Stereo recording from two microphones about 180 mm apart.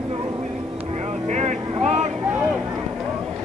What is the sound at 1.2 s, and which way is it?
Vehicle, 40° right (ahead or behind).